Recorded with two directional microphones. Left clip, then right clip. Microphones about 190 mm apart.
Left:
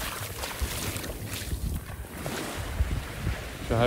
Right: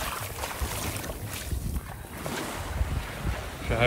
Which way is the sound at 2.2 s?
30° right (ahead or behind).